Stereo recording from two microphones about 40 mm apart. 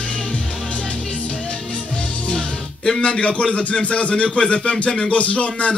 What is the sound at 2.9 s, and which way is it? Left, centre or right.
Speech, left.